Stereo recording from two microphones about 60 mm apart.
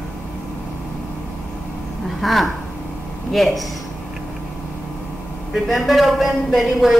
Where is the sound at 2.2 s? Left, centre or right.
Centre.